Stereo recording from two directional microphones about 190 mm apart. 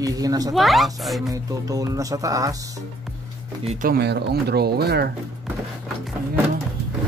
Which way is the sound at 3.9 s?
60° right (ahead or behind).